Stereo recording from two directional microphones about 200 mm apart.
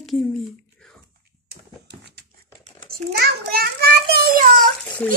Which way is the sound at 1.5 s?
55° right (ahead or behind).